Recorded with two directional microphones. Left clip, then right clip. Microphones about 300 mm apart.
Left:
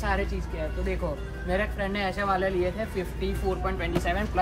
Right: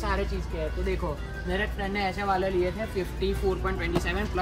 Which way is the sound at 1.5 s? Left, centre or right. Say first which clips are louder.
Left 2 dB; centre.